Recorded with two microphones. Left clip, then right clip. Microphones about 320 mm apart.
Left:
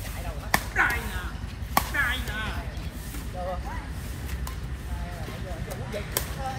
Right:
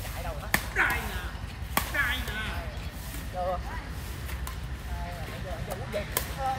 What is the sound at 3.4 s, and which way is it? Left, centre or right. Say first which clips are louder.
Chuckle: right 3 dB; centre.